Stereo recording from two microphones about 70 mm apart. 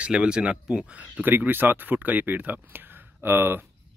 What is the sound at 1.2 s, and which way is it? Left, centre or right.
Speech, right.